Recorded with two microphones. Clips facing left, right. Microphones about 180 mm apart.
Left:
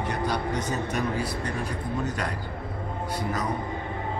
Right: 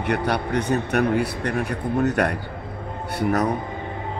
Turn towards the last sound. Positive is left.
turn(degrees=-65)  # may be behind; listen again after turning